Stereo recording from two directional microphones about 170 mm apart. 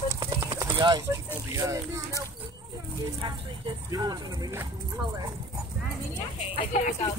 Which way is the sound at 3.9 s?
25° right (ahead or behind).